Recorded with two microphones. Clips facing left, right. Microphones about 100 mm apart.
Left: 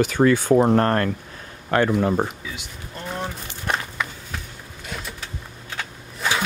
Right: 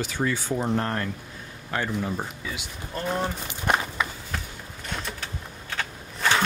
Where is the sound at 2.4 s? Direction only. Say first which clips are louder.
Even; centre (ahead or behind).